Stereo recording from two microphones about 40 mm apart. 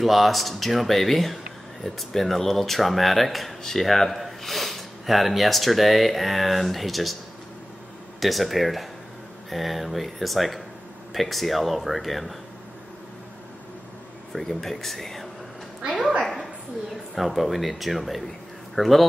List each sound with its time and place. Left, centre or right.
0.0 s speech: centre
8.2 s speech: centre
14.3 s speech: centre
16.2 s a sound: centre
17.1 s speech: centre